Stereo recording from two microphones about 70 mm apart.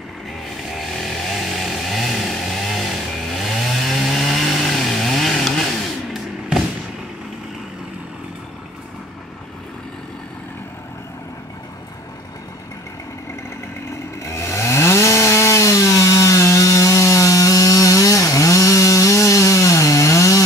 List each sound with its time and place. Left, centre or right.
0.7 s chainsaw: centre
14.2 s chainsaw: left